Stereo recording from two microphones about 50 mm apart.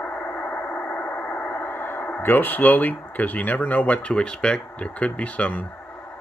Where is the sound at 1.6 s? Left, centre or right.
Left.